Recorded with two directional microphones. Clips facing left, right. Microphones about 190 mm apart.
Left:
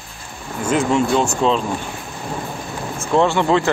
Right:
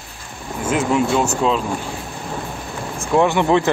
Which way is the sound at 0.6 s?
5° right (ahead or behind).